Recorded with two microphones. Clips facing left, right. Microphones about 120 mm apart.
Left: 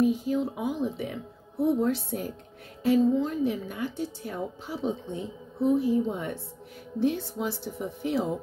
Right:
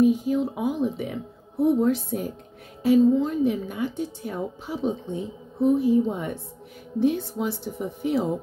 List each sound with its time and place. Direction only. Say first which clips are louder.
0.0 s a woman's voice: right 4 dB; 15° right (ahead or behind)